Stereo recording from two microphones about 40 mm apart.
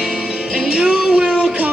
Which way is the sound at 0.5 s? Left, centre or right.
Centre.